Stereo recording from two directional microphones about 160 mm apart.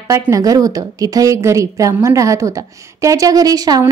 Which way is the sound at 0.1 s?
20° right (ahead or behind).